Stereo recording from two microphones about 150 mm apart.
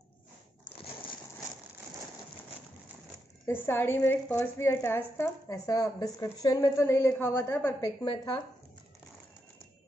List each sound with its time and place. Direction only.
3.4 s a woman's voice: 15° left (ahead or behind)